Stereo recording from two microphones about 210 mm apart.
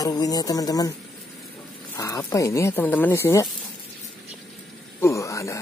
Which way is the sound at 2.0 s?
15° left (ahead or behind).